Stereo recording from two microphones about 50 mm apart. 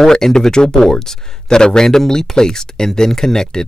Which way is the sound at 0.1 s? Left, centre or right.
Centre.